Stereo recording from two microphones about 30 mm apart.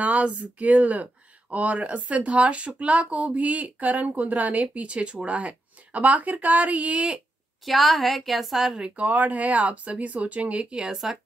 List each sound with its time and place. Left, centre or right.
0.0 s speech: right
4.8 s speech: right
5.9 s speech: right
7.6 s a woman's voice: centre
8.9 s speech: right